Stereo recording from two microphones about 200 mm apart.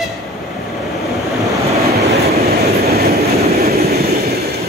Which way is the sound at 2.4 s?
50° right (ahead or behind).